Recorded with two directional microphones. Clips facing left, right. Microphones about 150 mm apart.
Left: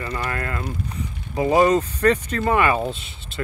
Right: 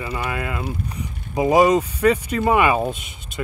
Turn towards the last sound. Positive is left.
turn(degrees=-15)  # may be behind; listen again after turning